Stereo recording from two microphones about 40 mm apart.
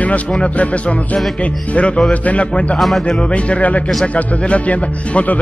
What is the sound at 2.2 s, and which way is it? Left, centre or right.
Speech, left.